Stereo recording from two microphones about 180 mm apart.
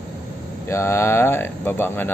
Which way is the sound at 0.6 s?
15° left (ahead or behind).